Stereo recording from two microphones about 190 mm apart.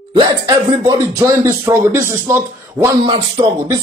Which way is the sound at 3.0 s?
25° right (ahead or behind).